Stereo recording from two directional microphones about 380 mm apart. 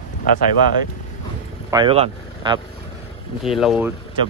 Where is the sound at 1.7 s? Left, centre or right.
Centre.